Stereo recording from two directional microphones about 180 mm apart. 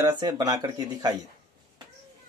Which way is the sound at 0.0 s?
20° right (ahead or behind).